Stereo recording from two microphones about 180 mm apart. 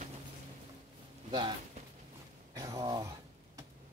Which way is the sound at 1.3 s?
25° right (ahead or behind).